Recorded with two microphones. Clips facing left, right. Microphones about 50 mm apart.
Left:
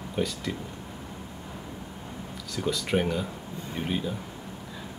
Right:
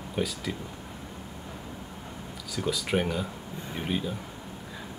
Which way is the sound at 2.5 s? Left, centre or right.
Centre.